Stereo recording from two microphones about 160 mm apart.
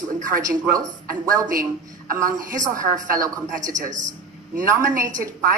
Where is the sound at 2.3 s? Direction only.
55° right (ahead or behind).